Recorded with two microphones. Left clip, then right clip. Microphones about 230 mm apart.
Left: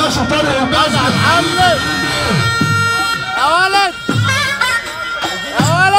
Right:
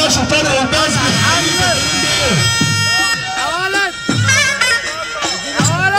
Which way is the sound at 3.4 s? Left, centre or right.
Left.